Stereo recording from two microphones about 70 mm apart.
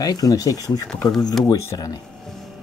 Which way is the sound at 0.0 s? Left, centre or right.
Left.